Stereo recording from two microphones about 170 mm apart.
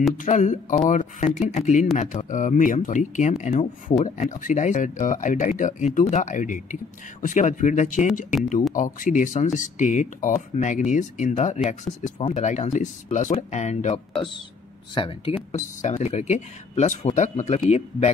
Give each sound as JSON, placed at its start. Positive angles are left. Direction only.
{"t": 0.2, "sound": "speech", "side_deg": 45}
{"t": 15.5, "sound": "speech", "side_deg": 45}